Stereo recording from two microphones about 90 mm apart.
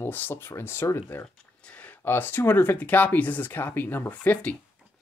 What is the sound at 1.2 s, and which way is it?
Speech, 15° left (ahead or behind).